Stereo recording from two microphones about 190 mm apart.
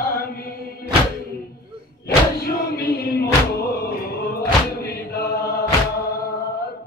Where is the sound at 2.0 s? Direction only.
55° left (ahead or behind).